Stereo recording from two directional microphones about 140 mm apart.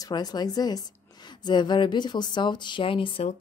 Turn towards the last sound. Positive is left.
turn(degrees=40)  # may be behind; listen again after turning